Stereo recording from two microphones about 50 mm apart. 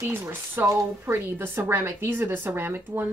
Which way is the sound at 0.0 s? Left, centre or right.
Right.